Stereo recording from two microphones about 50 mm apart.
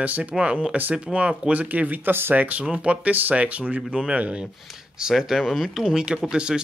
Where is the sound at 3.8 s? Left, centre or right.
Centre.